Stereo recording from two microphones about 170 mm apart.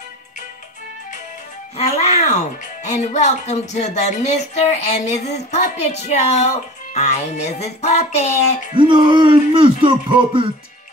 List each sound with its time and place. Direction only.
1.8 s speech: 40° left (ahead or behind)
8.7 s speech: 30° right (ahead or behind)